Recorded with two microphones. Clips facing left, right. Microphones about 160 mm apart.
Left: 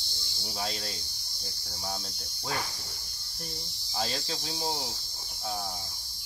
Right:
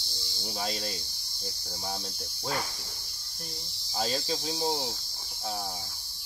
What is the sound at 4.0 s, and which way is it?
Cricket, 5° right (ahead or behind).